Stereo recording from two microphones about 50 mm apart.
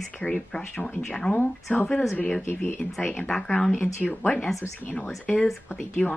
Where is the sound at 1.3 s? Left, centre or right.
Left.